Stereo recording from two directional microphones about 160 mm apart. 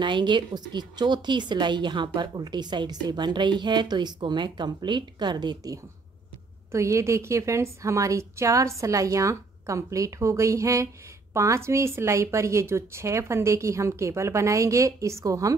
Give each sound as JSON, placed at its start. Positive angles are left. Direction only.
{"t": 0.0, "sound": "a woman's voice", "side_deg": -30}